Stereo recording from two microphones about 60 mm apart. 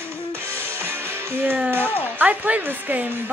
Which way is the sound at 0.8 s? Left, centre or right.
Right.